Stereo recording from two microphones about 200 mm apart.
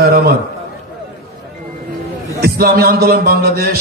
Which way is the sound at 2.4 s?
50° right (ahead or behind).